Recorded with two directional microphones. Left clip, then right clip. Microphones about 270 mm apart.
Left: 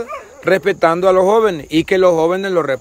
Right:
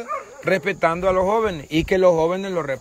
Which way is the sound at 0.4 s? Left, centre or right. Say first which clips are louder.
Left 7 dB; centre.